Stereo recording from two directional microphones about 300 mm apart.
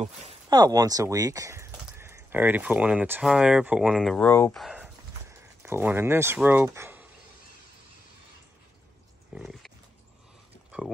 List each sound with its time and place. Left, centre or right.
0.0 s speech: centre
9.3 s dog: centre